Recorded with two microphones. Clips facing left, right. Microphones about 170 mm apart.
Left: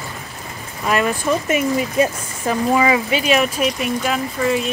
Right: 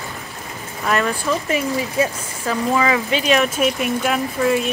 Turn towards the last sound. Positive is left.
turn(degrees=0)  # may be behind; listen again after turning